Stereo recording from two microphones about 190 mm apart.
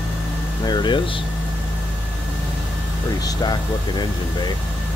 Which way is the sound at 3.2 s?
20° left (ahead or behind).